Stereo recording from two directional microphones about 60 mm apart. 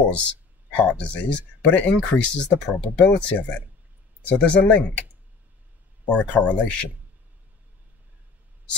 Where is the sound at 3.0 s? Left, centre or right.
Left.